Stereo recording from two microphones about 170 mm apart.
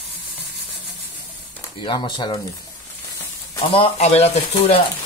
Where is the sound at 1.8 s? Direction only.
25° left (ahead or behind).